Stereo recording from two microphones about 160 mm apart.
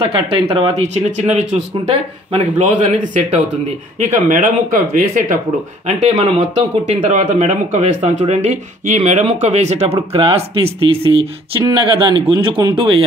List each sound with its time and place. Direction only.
0.0 s speech: 35° right (ahead or behind); by 5.4 s 55° right (ahead or behind)
5.9 s speech: 45° right (ahead or behind)